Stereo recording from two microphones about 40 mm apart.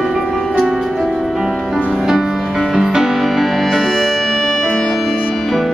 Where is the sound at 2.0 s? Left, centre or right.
Centre.